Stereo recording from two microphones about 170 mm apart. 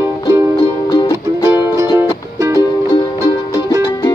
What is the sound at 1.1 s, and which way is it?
Music, 20° right (ahead or behind).